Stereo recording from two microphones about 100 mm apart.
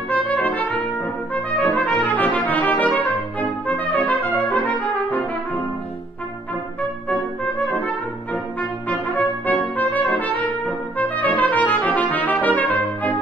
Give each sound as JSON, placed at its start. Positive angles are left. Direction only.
{"t": 0.1, "sound": "trumpet", "side_deg": 15}
{"t": 7.1, "sound": "trumpet", "side_deg": 15}